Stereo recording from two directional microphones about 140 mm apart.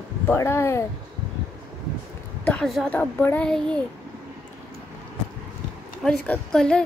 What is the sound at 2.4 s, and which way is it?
A woman's voice, 5° left (ahead or behind).